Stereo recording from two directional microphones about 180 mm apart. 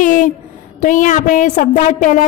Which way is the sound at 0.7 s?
45° left (ahead or behind).